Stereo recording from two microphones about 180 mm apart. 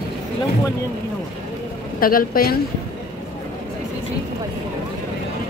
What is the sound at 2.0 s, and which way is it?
Speech, 55° left (ahead or behind).